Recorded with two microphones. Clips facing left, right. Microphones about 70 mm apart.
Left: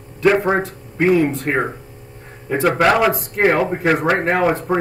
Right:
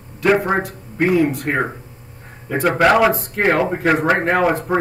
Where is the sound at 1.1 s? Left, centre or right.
Left.